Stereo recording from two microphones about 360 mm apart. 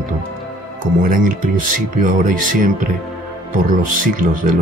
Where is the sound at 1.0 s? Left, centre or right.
Right.